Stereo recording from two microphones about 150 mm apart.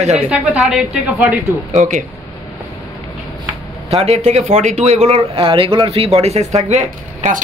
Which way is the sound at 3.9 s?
45° right (ahead or behind).